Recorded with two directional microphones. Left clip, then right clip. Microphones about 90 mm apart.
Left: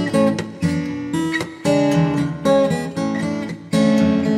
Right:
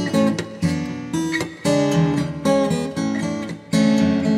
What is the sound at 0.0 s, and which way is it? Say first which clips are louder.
Music: left 2 dB; 15° left (ahead or behind).